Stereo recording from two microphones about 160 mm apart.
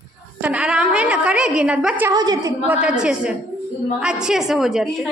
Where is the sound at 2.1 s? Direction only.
25° right (ahead or behind).